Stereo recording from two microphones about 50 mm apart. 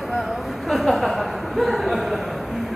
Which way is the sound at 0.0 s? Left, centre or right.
Centre.